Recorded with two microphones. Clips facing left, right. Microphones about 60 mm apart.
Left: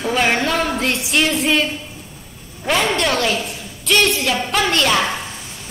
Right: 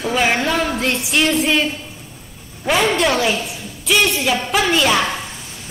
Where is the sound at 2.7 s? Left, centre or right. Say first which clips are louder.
Right 2 dB; centre.